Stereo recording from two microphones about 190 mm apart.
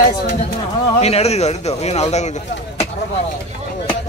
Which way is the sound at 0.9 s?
35° left (ahead or behind).